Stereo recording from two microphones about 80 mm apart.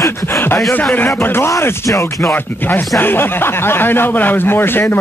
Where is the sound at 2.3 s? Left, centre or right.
Left.